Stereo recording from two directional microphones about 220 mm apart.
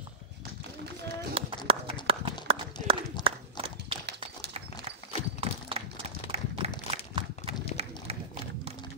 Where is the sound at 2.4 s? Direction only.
25° right (ahead or behind).